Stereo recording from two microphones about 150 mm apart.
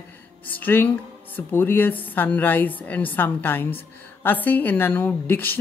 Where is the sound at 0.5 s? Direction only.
10° left (ahead or behind).